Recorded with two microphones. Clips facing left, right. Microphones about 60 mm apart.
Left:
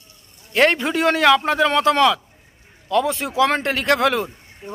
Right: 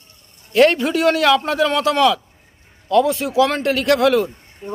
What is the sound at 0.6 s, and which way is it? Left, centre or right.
A man's voice, left.